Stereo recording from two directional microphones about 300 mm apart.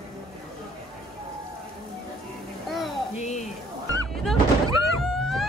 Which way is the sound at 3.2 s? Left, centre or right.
Left.